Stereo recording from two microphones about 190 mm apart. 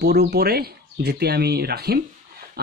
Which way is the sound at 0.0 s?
60° right (ahead or behind).